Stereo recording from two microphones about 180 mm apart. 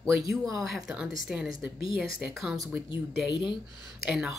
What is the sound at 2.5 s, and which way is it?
Speech, 20° right (ahead or behind).